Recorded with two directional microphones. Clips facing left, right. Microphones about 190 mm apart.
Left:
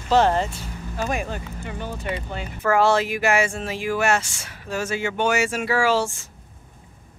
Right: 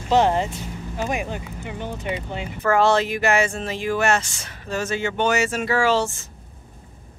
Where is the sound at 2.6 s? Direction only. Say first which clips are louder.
Right 1 dB; 5° left (ahead or behind).